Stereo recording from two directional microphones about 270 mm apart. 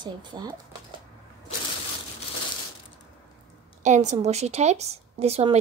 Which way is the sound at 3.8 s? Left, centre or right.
Right.